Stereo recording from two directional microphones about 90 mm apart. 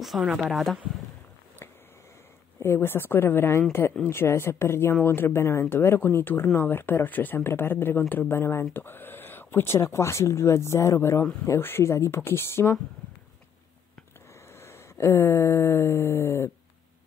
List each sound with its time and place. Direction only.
0.0 s speech: 5° right (ahead or behind)
2.6 s speech: 25° left (ahead or behind)
14.5 s a sound: 30° left (ahead or behind)